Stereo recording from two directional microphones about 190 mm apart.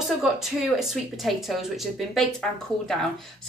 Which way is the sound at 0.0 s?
Centre (ahead or behind).